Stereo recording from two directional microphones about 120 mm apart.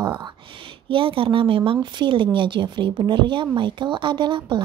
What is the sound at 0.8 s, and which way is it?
Speech, 45° right (ahead or behind).